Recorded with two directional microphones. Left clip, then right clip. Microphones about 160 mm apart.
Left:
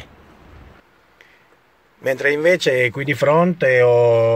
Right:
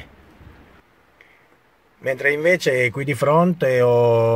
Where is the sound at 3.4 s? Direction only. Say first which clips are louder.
Left 3 dB; 20° right (ahead or behind).